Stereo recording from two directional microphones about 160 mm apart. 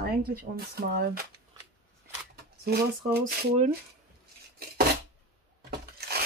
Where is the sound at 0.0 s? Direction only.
70° right (ahead or behind).